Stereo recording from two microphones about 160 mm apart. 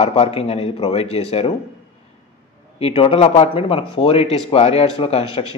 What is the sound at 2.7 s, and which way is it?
A man's voice, 35° left (ahead or behind).